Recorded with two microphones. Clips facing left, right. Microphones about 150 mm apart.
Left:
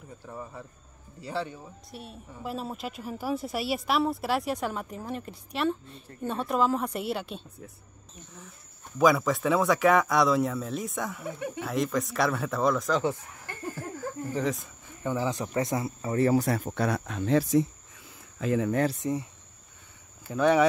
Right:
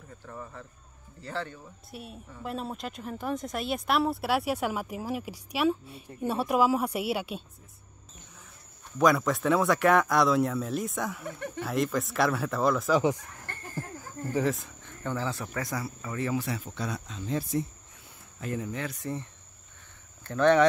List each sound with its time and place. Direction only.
0.3 s speech: 15° left (ahead or behind)
1.9 s a woman's voice: centre (ahead or behind)
8.9 s speech: centre (ahead or behind)
13.4 s a sound: 10° left (ahead or behind)
13.9 s a sound: 10° right (ahead or behind)
14.9 s speech: 15° left (ahead or behind); by 17.6 s 90° left
19.0 s speech: 20° left (ahead or behind)
20.2 s speech: 10° left (ahead or behind)